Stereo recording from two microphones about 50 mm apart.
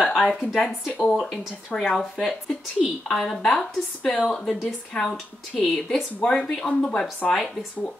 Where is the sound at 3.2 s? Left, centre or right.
Centre.